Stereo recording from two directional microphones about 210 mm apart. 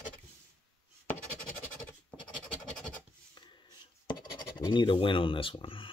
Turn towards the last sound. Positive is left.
turn(degrees=25)  # may be behind; listen again after turning